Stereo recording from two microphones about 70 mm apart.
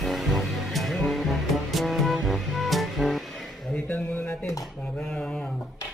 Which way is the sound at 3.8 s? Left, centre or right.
Left.